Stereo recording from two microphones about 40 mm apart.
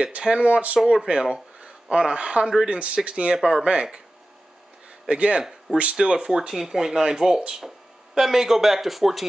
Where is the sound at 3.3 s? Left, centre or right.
Centre.